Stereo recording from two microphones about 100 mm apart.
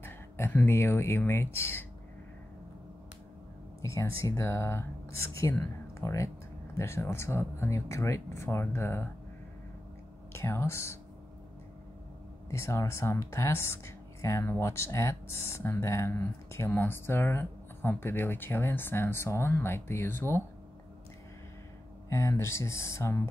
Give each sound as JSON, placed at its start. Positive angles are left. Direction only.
{"t": 0.0, "sound": "speech", "side_deg": 20}
{"t": 3.8, "sound": "speech", "side_deg": 30}
{"t": 10.3, "sound": "speech", "side_deg": 25}
{"t": 12.4, "sound": "speech", "side_deg": 30}
{"t": 22.1, "sound": "speech", "side_deg": 30}